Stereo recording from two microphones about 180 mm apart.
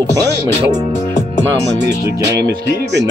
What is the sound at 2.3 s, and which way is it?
Music, 70° right (ahead or behind).